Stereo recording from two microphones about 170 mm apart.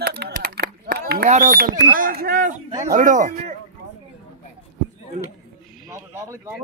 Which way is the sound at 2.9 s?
50° right (ahead or behind).